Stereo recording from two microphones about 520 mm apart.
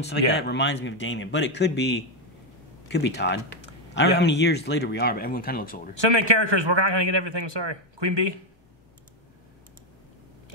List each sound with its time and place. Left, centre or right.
0.3 s speech: centre
5.9 s a man's voice: right